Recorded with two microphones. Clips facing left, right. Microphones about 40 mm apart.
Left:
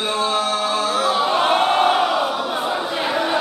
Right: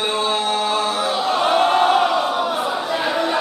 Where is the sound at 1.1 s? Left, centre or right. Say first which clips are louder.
Right 1 dB; left; by 2.2 s centre.